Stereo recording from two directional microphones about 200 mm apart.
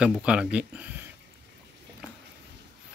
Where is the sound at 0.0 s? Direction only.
5° right (ahead or behind).